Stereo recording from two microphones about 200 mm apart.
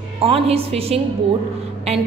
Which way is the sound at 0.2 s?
30° right (ahead or behind).